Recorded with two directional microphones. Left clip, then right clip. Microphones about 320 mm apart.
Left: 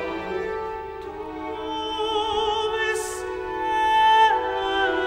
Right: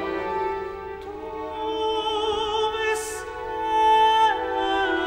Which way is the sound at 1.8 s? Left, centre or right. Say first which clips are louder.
Even; centre.